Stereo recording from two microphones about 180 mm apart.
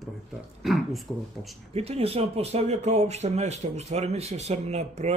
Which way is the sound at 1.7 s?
35° right (ahead or behind).